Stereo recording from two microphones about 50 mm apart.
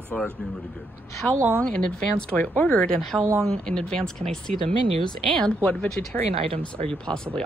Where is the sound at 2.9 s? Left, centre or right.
Centre.